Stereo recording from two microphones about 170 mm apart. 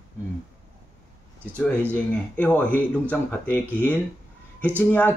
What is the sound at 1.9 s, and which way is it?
Speech, 10° left (ahead or behind).